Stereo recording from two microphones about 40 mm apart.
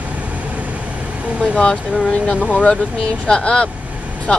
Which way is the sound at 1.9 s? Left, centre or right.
Right.